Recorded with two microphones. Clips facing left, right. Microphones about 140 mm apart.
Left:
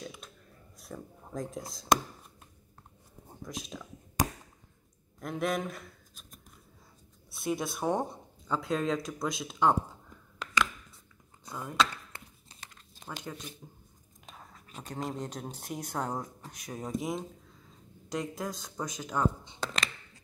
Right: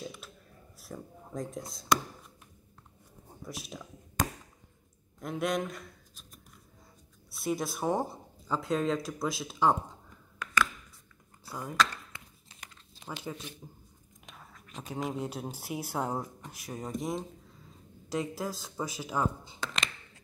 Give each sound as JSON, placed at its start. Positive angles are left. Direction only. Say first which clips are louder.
{"t": 0.7, "sound": "speech", "louder": "even", "side_deg": 0}
{"t": 3.4, "sound": "speech", "louder": "left 1 dB", "side_deg": -5}
{"t": 5.2, "sound": "speech", "louder": "even", "side_deg": 0}
{"t": 7.2, "sound": "speech", "louder": "even", "side_deg": 0}
{"t": 11.4, "sound": "speech", "louder": "right 1 dB", "side_deg": 0}
{"t": 11.7, "sound": "chop", "louder": "even", "side_deg": 30}
{"t": 13.0, "sound": "speech", "louder": "right 2 dB", "side_deg": -5}